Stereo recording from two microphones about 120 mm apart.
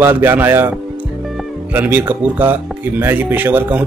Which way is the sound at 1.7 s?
15° right (ahead or behind).